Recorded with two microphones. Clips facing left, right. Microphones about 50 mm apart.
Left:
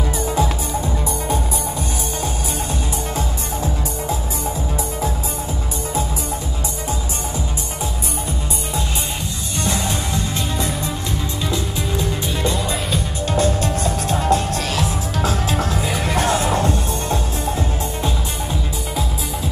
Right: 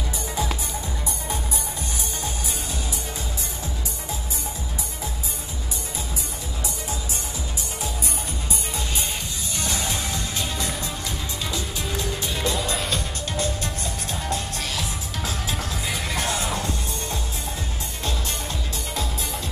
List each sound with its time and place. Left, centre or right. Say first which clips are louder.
9.6 s music: left 6 dB; centre
11.5 s music: left 6 dB; centre
14.3 s music: left 9 dB; left
16.1 s music: left 9 dB; left